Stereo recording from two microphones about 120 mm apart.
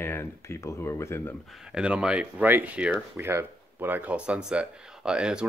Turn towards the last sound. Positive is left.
turn(degrees=-5)  # may be behind; listen again after turning